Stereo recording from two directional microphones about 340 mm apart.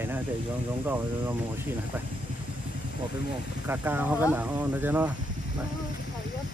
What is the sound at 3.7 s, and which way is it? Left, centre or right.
Speech, centre.